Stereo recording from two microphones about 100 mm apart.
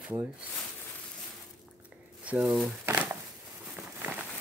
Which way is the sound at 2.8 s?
15° right (ahead or behind).